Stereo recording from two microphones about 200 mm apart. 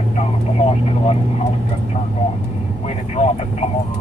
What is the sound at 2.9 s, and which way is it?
Speech, 30° left (ahead or behind).